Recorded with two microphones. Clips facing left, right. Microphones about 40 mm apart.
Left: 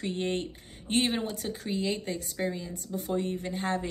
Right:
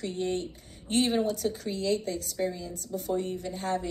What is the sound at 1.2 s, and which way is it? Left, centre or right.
A woman's voice, centre.